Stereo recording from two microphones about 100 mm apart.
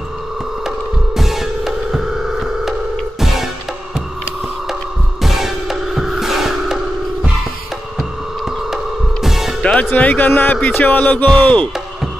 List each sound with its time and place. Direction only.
0.7 s music: 5° right (ahead or behind)
5.2 s music: 5° right (ahead or behind)
8.0 s a sound: 5° right (ahead or behind)
9.2 s music: 5° right (ahead or behind)
9.6 s music: 10° left (ahead or behind)